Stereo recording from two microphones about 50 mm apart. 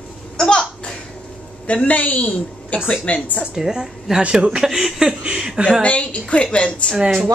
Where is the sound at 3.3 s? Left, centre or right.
Centre.